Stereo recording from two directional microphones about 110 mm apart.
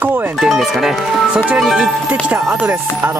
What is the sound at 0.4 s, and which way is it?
Speech, centre (ahead or behind).